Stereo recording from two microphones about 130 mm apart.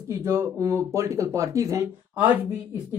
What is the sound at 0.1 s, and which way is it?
Speech, 20° right (ahead or behind).